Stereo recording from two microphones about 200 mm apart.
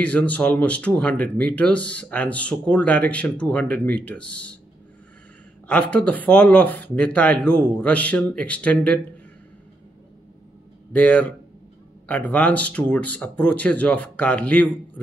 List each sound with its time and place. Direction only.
0.0 s speech: 5° left (ahead or behind)
5.7 s speech: 5° left (ahead or behind)
10.9 s speech: 5° left (ahead or behind)